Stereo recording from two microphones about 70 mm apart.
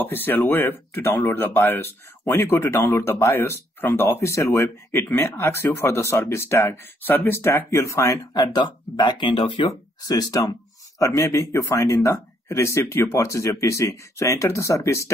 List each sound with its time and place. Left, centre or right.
0.0 s speech: left
8.3 s speech: left
10.0 s speech: left
11.0 s speech: left